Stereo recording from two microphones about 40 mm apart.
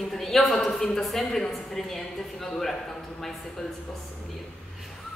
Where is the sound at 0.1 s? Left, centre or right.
Centre.